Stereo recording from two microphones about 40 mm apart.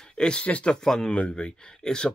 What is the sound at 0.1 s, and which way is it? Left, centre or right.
Speech, left.